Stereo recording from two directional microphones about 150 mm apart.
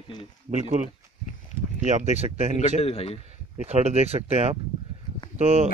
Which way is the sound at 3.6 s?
45° right (ahead or behind).